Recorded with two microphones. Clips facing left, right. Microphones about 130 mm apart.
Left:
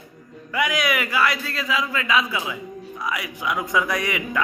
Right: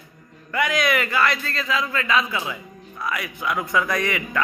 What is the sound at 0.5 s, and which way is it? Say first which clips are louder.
A man's voice: right 1 dB; 10° left (ahead or behind).